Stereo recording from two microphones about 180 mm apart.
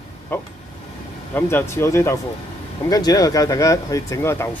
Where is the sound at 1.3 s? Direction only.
10° left (ahead or behind).